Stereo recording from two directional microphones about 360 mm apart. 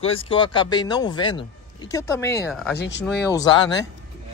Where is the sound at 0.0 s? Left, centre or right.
Centre.